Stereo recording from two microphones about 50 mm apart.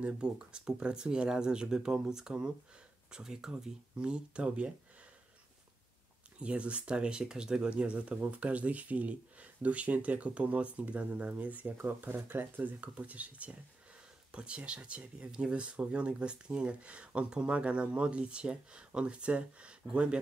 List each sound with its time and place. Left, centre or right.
0.0 s speech: centre
6.4 s speech: right
11.7 s speech: right; by 20.2 s centre